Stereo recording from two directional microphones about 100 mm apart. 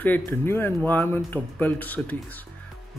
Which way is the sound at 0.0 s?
20° left (ahead or behind).